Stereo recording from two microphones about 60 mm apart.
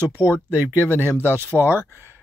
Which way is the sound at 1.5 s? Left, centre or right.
Left.